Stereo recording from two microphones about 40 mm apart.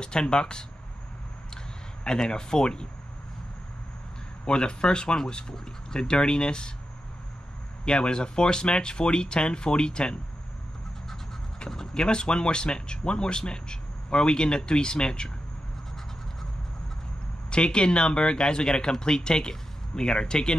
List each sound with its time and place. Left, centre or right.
0.0 s speech: centre
2.0 s speech: centre
4.5 s speech: left
7.8 s speech: left
11.7 s speech: centre
17.5 s speech: left